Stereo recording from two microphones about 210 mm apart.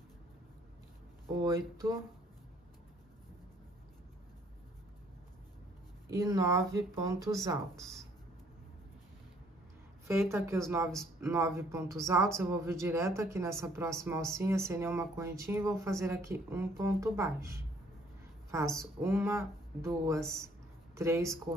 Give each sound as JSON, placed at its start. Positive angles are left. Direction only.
{"t": 1.4, "sound": "speech", "side_deg": -15}
{"t": 6.0, "sound": "speech", "side_deg": -15}
{"t": 10.3, "sound": "speech", "side_deg": -15}
{"t": 10.9, "sound": "speech", "side_deg": 0}
{"t": 11.2, "sound": "speech", "side_deg": -15}
{"t": 18.8, "sound": "speech", "side_deg": -10}